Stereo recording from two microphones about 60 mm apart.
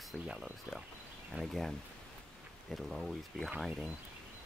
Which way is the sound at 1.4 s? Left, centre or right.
Right.